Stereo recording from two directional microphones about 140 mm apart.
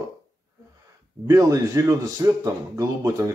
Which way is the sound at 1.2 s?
25° right (ahead or behind).